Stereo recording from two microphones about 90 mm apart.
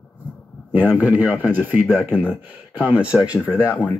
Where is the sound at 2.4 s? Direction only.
15° right (ahead or behind).